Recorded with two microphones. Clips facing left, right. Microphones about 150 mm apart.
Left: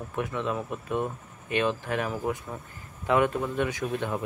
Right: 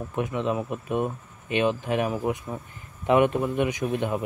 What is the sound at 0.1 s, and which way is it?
Speech, 20° right (ahead or behind).